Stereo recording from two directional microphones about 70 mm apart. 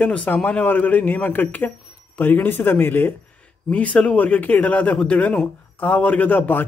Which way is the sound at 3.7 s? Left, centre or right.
Centre.